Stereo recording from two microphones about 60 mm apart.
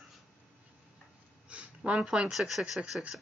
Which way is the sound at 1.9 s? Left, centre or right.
Centre.